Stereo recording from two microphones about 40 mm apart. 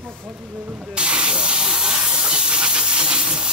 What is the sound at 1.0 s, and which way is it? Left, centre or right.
Steam, right.